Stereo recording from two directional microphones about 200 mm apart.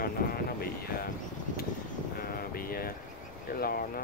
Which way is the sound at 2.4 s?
45° left (ahead or behind).